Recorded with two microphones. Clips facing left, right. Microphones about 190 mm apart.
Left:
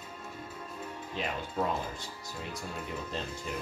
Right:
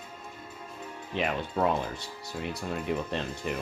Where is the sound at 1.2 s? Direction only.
70° right (ahead or behind).